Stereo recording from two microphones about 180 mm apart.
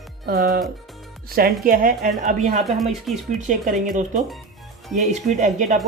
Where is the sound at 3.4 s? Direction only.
45° right (ahead or behind).